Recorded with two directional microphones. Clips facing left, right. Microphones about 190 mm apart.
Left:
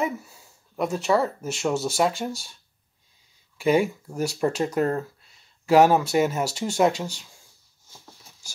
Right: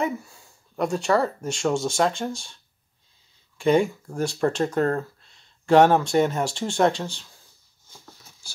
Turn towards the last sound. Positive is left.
turn(degrees=10)  # may be behind; listen again after turning